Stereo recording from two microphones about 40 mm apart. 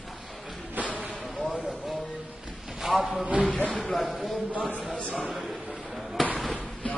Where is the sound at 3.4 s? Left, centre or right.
Left.